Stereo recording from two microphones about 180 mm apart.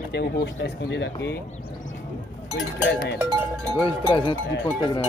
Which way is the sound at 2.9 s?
70° left (ahead or behind).